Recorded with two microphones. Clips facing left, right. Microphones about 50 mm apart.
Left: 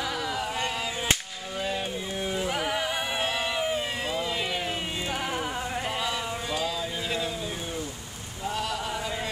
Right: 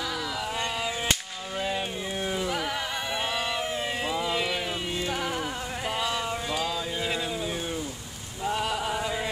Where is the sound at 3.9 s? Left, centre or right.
Centre.